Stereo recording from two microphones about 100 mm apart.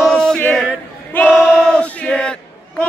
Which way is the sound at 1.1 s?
15° left (ahead or behind).